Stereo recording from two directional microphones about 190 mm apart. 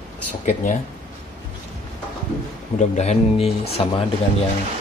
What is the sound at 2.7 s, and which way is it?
Speech, 35° left (ahead or behind).